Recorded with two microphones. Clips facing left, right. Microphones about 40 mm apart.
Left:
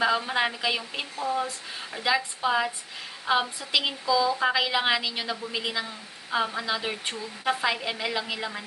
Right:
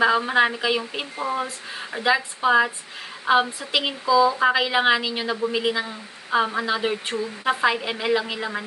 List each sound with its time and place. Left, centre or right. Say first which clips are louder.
0.0 s a woman's voice: right 6 dB; centre
1.3 s a woman's voice: right 2 dB; right